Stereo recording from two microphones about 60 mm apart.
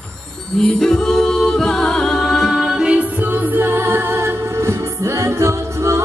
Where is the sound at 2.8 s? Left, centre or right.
Right.